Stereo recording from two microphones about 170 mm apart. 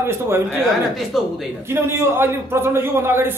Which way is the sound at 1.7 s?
15° right (ahead or behind).